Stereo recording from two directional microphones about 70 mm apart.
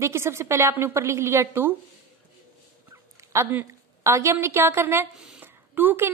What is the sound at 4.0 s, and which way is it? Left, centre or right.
A woman's voice, right.